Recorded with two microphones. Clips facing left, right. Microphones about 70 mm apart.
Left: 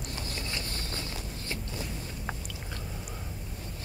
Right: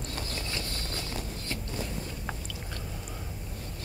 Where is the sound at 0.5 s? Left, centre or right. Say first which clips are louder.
Right 1 dB; left.